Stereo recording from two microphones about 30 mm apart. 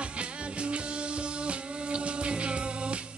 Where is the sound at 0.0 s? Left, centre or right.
Right.